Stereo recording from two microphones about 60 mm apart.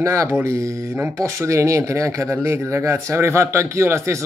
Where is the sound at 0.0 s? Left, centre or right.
Right.